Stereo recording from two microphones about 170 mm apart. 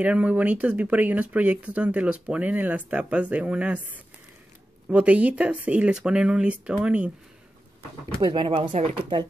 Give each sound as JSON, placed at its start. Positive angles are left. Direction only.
{"t": 0.0, "sound": "speech", "side_deg": -10}
{"t": 4.8, "sound": "speech", "side_deg": -10}
{"t": 8.2, "sound": "speech", "side_deg": -30}